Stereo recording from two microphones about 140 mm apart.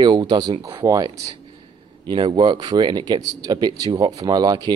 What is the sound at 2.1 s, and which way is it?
Speech, 35° right (ahead or behind).